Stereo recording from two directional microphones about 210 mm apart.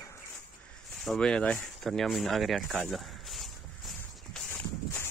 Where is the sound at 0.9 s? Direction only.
Centre (ahead or behind).